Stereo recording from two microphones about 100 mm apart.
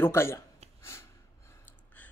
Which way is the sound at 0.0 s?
25° left (ahead or behind).